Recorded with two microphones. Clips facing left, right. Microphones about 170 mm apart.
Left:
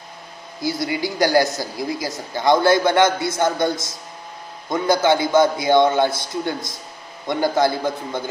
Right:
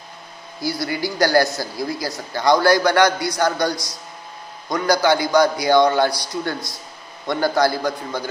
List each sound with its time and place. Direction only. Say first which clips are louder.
0.6 s a man's voice: left 1 dB; 20° left (ahead or behind)